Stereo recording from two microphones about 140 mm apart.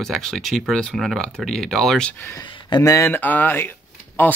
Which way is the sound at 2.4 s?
30° left (ahead or behind).